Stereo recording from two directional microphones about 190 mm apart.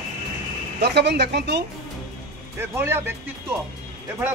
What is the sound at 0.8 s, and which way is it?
Speech, 60° right (ahead or behind).